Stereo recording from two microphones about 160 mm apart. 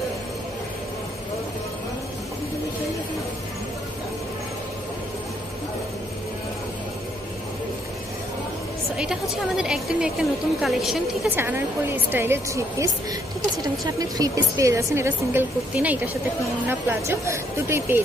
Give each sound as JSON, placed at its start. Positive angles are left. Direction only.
{"t": 8.9, "sound": "a woman's voice", "side_deg": -5}
{"t": 11.2, "sound": "a woman's voice", "side_deg": -15}